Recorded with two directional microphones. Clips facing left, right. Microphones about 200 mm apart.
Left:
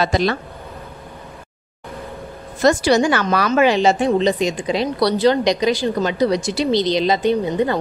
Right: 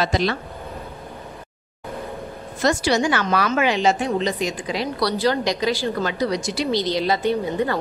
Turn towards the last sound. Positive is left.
turn(degrees=20)  # may be behind; listen again after turning